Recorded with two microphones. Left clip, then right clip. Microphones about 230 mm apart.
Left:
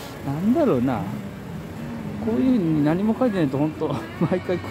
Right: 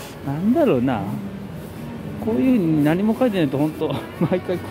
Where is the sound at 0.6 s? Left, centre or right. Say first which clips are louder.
Right 3 dB; centre.